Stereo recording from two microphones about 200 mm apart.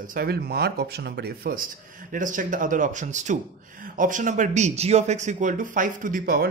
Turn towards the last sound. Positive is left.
turn(degrees=-50)  # may be behind; listen again after turning